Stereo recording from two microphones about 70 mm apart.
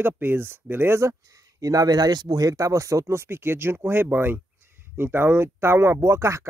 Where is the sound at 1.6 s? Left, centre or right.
Right.